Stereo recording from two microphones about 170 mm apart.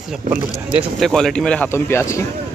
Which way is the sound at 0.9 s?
Centre (ahead or behind).